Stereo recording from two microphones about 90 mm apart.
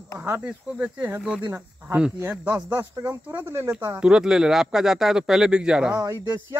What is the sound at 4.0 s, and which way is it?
Speech, 10° right (ahead or behind).